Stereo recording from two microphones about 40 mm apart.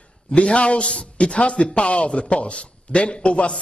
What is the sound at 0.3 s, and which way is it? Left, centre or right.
A man's voice, left.